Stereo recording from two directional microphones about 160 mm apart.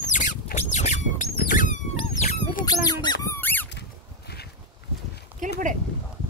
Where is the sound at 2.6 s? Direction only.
25° left (ahead or behind).